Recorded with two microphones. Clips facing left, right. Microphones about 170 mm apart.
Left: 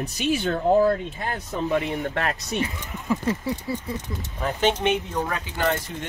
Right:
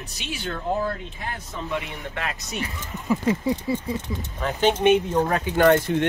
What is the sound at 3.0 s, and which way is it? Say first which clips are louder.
Speech: right 3 dB; 15° right (ahead or behind).